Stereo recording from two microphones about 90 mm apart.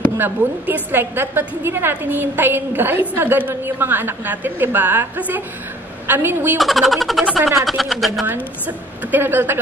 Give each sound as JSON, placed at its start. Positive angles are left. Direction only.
{"t": 0.2, "sound": "a woman's voice", "side_deg": -20}
{"t": 6.6, "sound": "a sound", "side_deg": 0}
{"t": 8.3, "sound": "a woman's voice", "side_deg": -20}